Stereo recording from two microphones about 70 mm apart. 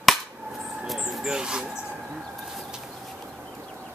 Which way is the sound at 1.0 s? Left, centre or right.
Centre.